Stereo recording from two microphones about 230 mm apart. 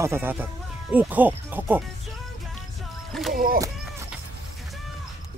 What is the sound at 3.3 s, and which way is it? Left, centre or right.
Speech, right.